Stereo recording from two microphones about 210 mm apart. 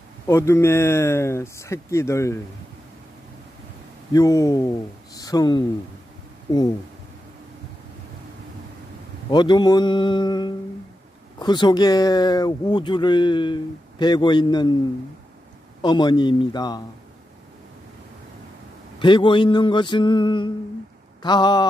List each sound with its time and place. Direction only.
0.3 s speech: 15° left (ahead or behind)
4.1 s speech: 15° left (ahead or behind)
9.3 s speech: 20° left (ahead or behind)
15.8 s speech: 20° left (ahead or behind)
18.9 s speech: 25° left (ahead or behind)